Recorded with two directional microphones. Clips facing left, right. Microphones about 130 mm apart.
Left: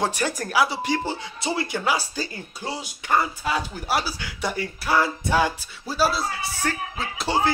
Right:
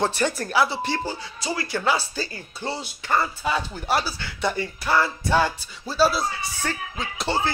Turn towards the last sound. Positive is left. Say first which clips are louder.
# left 2 dB
turn(degrees=10)  # may be behind; listen again after turning